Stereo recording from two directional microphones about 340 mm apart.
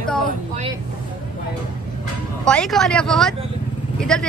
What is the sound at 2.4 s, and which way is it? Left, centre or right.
Speech, centre.